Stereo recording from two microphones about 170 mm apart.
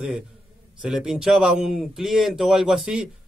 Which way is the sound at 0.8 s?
5° right (ahead or behind).